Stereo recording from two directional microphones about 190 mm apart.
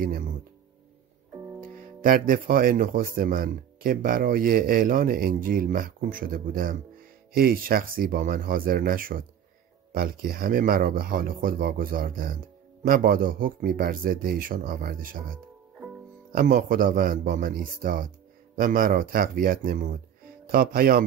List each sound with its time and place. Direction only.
0.0 s speech: 50° right (ahead or behind)
1.6 s speech: 45° right (ahead or behind)